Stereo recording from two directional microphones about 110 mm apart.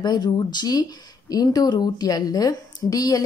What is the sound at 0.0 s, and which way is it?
Speech, 40° left (ahead or behind).